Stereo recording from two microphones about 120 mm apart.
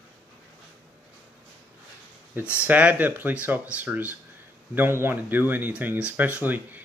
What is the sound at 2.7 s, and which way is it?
Speech, 15° right (ahead or behind).